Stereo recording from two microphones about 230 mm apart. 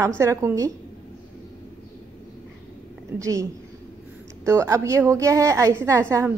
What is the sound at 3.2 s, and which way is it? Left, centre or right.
A woman's voice, centre.